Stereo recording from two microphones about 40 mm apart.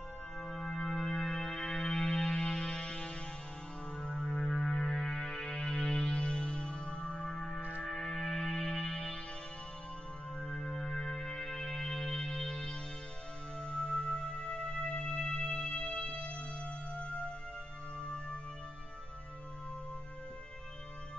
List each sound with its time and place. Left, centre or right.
0.4 s music: centre
6.0 s music: left
10.4 s music: left